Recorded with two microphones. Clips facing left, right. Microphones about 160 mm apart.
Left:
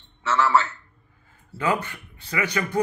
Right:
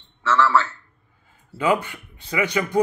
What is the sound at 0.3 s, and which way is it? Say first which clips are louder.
Speech: right 2 dB; 20° left (ahead or behind).